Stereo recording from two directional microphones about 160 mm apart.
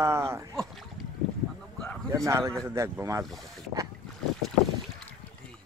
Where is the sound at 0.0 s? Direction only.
15° right (ahead or behind).